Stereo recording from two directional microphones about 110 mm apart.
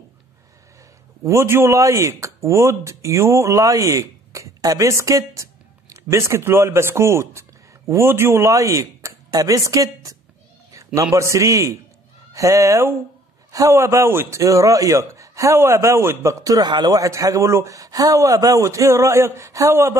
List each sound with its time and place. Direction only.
1.2 s speech: 25° right (ahead or behind)
11.1 s a man's voice: 30° right (ahead or behind)